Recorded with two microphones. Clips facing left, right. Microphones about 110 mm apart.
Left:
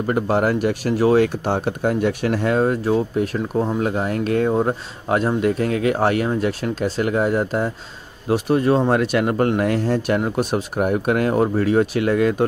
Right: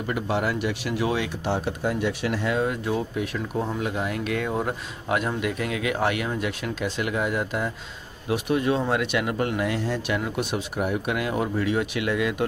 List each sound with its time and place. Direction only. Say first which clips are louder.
0.0 s speech: left 7 dB; 45° left (ahead or behind)